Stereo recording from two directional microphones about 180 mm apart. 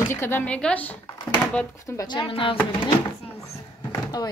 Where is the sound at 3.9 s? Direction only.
20° left (ahead or behind).